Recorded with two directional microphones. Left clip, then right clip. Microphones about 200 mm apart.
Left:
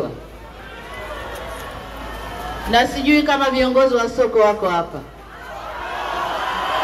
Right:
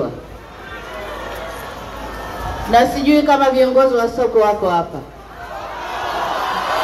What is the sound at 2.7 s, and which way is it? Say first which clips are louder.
A man's voice: right 3 dB; 45° right (ahead or behind).